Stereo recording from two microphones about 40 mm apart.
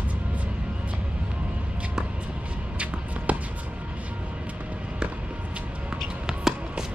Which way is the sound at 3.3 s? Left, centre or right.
Right.